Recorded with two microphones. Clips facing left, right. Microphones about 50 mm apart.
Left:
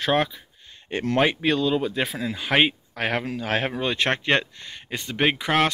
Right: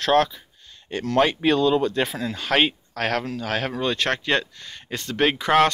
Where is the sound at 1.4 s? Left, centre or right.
Centre.